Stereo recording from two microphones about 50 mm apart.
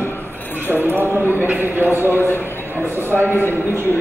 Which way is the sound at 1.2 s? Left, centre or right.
Left.